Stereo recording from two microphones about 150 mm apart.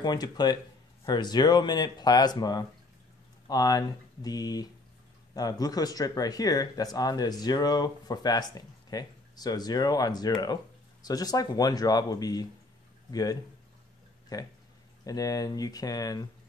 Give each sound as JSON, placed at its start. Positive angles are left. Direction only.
{"t": 0.0, "sound": "speech", "side_deg": 25}